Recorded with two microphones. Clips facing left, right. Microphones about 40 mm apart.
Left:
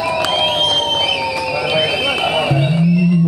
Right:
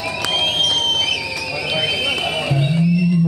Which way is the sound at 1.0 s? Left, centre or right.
Centre.